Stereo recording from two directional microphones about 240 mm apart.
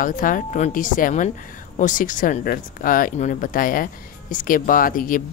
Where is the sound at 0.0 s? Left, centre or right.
Left.